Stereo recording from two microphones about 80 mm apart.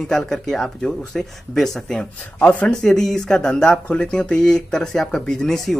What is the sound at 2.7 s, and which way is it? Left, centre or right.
Speech, centre.